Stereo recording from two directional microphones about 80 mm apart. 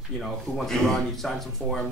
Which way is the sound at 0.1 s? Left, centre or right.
Centre.